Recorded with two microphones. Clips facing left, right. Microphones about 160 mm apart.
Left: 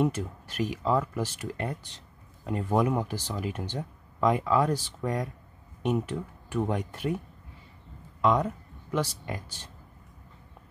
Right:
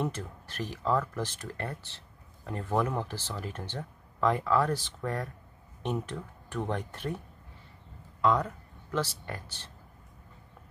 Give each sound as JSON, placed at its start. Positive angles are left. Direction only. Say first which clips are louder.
{"t": 0.0, "sound": "speech", "louder": "left 6 dB", "side_deg": 10}
{"t": 8.2, "sound": "a sound", "louder": "left 2 dB", "side_deg": 20}
{"t": 9.2, "sound": "speech", "louder": "left 4 dB", "side_deg": 15}